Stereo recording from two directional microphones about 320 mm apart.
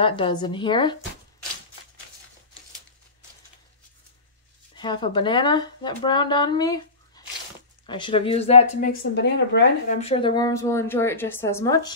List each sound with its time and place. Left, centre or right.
0.0 s a woman's voice: centre
4.7 s speech: centre; by 9.9 s left
9.9 s a woman's voice: centre